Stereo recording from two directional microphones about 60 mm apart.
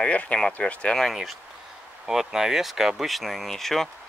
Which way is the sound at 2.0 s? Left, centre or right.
Centre.